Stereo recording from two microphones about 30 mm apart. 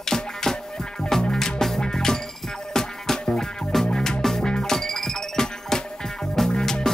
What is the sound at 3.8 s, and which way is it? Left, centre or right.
Music, left.